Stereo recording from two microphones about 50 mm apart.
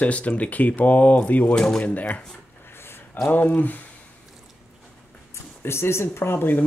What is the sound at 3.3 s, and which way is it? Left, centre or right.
Speech, left.